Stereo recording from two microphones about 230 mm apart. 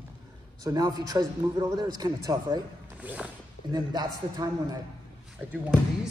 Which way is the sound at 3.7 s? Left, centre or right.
Centre.